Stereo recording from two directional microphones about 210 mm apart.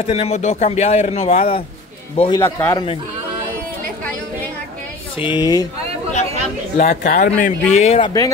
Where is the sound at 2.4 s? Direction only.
10° left (ahead or behind).